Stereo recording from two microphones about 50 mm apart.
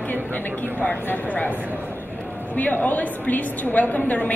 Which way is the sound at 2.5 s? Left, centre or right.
Left.